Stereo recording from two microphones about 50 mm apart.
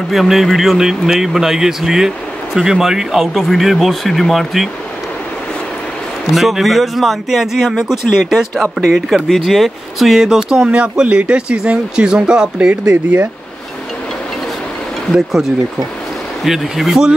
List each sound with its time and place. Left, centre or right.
0.1 s speech: centre
6.3 s speech: centre
10.8 s speech: right
12.9 s speech: right
15.1 s speech: centre